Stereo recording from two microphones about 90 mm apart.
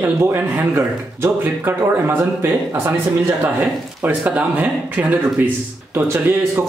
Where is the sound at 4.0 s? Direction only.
15° right (ahead or behind).